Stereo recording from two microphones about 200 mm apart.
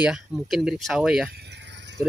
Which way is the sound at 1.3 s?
55° right (ahead or behind).